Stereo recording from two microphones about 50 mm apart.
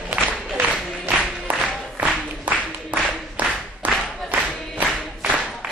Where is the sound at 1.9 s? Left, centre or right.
Right.